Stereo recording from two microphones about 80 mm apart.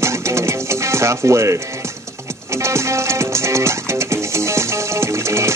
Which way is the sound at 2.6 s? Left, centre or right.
Right.